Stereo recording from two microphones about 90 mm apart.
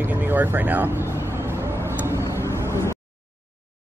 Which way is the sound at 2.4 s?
30° left (ahead or behind).